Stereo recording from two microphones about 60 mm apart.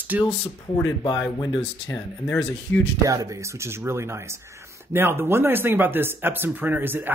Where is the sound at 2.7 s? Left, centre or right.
Left.